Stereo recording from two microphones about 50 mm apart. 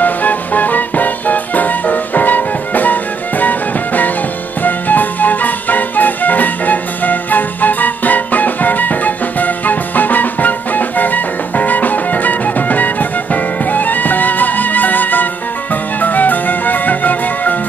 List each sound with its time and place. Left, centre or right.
0.0 s music: left